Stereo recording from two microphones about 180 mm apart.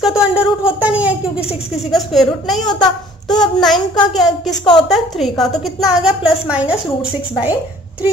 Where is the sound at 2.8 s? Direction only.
20° left (ahead or behind).